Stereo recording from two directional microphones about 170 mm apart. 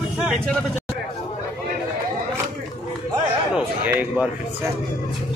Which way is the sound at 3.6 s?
10° right (ahead or behind).